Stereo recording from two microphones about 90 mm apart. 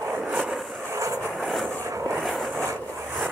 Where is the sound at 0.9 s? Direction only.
35° right (ahead or behind).